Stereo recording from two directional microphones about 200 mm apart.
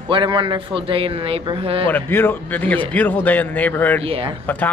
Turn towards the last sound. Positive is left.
turn(degrees=10)  # may be behind; listen again after turning